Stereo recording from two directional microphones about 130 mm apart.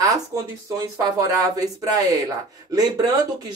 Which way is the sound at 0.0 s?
30° right (ahead or behind).